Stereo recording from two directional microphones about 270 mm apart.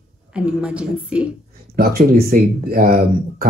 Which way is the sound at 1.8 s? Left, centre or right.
Right.